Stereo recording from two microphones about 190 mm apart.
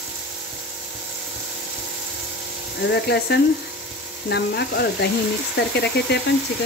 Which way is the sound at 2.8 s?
60° left (ahead or behind).